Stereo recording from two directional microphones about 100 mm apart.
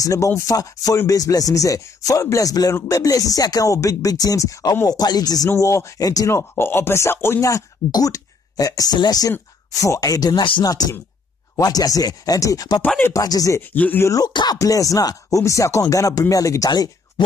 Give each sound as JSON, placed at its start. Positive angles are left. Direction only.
{"t": 0.0, "sound": "speech", "side_deg": 30}
{"t": 5.5, "sound": "speech", "side_deg": 30}
{"t": 13.6, "sound": "speech", "side_deg": 20}
{"t": 14.0, "sound": "speech", "side_deg": 35}
{"t": 14.3, "sound": "speech", "side_deg": 45}
{"t": 14.6, "sound": "speech", "side_deg": 35}